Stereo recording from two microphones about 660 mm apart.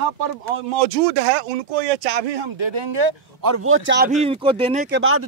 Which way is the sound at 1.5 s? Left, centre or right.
Right.